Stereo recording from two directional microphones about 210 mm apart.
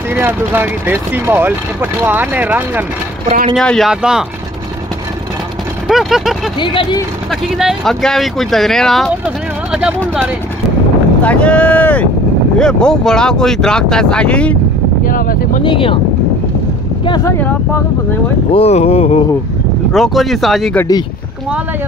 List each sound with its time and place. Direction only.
0.1 s speech: 10° right (ahead or behind)
5.9 s speech: centre (ahead or behind)
6.6 s speech: 25° left (ahead or behind)
7.2 s speech: centre (ahead or behind)
9.7 s a sound: 5° right (ahead or behind)
11.2 s speech: 5° left (ahead or behind)
15.0 s speech: 40° left (ahead or behind)
15.6 s speech: 25° left (ahead or behind)
17.0 s speech: 15° left (ahead or behind)
18.5 s speech: 30° left (ahead or behind)
19.9 s speech: centre (ahead or behind)